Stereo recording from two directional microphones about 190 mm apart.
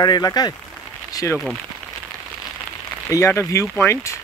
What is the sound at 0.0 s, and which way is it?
Speech, 20° left (ahead or behind).